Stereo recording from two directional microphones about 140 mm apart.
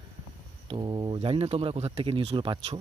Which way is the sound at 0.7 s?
35° right (ahead or behind).